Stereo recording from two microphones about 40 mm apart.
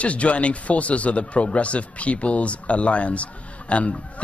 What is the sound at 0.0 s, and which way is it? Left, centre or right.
A man's voice, left.